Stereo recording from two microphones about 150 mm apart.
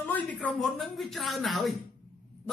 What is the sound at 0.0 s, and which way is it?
A man's voice, 10° left (ahead or behind).